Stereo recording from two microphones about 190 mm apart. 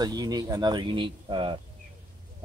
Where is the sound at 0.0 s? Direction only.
20° right (ahead or behind).